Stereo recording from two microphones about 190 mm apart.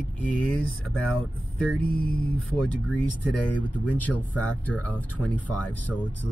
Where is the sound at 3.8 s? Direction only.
5° left (ahead or behind).